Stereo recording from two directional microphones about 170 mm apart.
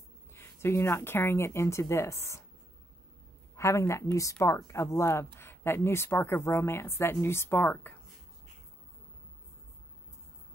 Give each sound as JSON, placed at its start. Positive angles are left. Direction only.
{"t": 0.3, "sound": "a woman's voice", "side_deg": 15}
{"t": 3.5, "sound": "a woman's voice", "side_deg": 15}